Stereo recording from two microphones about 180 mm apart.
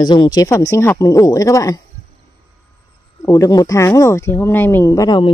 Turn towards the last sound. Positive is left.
turn(degrees=20)  # may be behind; listen again after turning